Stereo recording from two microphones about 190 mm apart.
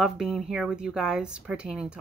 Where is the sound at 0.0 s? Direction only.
Centre (ahead or behind).